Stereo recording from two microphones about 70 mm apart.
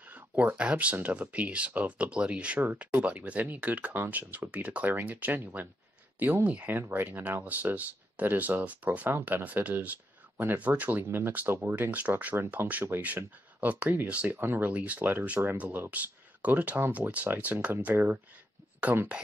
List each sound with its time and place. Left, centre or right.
0.1 s speech: right
6.7 s speech: right
14.3 s speech: right
14.7 s speech: right
17.9 s speech: right